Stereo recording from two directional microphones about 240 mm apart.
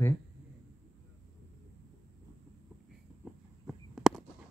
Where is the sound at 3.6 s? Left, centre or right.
Centre.